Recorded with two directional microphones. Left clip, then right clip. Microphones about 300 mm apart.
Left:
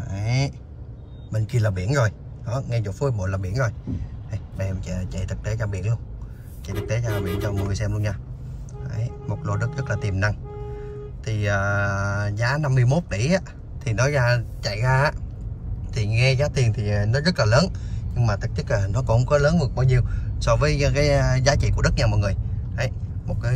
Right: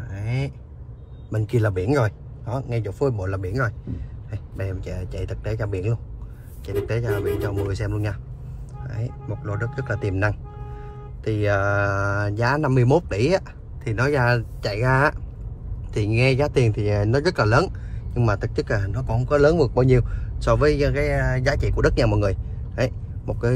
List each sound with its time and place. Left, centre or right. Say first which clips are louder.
0.0 s a sound: left 3 dB; centre
1.3 s speech: right 4 dB; centre
11.9 s speech: right 3 dB; centre
19.4 s speech: right 6 dB; centre